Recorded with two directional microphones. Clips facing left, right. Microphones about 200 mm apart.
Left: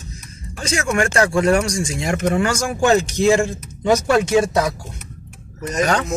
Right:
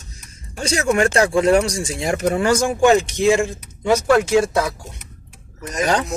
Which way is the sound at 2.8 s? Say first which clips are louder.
Left 1 dB; 15° right (ahead or behind).